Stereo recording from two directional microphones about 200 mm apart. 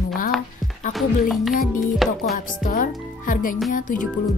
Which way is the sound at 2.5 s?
40° left (ahead or behind).